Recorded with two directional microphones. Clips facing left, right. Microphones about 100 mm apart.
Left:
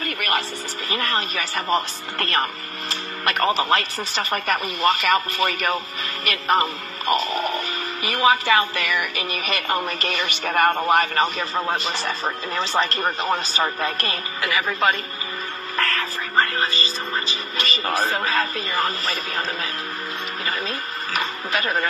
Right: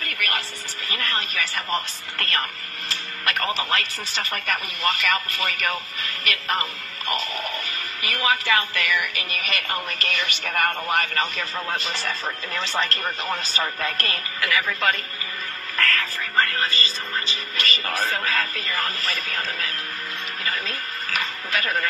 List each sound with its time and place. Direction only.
0.8 s speech: 30° left (ahead or behind)
2.9 s music: 25° left (ahead or behind)
4.1 s speech: 30° left (ahead or behind)
15.7 s music: 30° left (ahead or behind)
17.6 s speech: 30° left (ahead or behind)
21.2 s speech: 25° left (ahead or behind)